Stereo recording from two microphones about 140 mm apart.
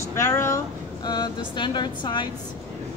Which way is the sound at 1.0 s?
30° left (ahead or behind).